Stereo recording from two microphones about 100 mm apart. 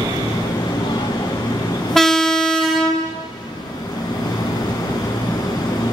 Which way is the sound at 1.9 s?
5° left (ahead or behind).